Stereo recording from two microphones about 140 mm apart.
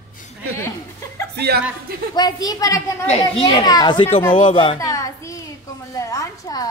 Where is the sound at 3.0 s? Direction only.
45° left (ahead or behind).